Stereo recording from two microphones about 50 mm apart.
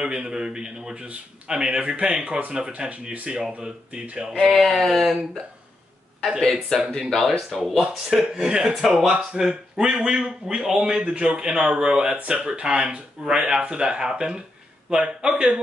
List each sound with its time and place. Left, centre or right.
0.0 s a man's voice: centre
4.5 s speech: centre
6.7 s speech: centre
7.1 s a man's voice: centre